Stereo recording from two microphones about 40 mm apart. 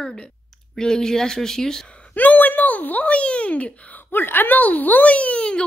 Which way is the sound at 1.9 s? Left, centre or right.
Left.